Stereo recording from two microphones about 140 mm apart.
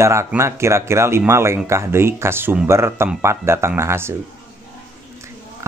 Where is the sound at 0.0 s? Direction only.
20° right (ahead or behind).